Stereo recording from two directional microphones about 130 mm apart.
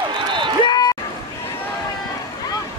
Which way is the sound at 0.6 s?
30° left (ahead or behind).